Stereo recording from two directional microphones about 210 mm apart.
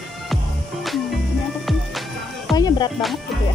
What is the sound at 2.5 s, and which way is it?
Music, 20° left (ahead or behind).